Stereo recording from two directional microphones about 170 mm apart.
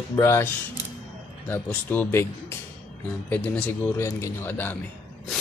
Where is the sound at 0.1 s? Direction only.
15° left (ahead or behind).